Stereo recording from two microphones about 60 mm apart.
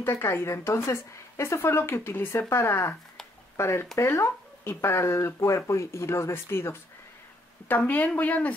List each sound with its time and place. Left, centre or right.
0.0 s a woman's voice: left
7.6 s a woman's voice: left